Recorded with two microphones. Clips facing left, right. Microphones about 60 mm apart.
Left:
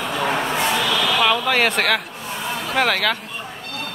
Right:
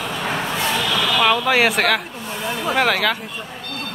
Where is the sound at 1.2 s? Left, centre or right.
Centre.